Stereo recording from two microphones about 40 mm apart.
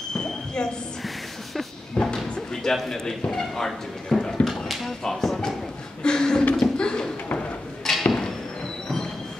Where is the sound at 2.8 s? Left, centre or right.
Centre.